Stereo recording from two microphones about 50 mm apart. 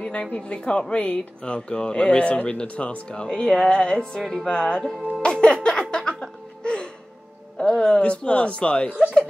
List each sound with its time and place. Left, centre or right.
0.0 s speech: left
5.2 s music: centre
5.7 s a sound: centre
6.6 s music: centre
7.5 s speech: centre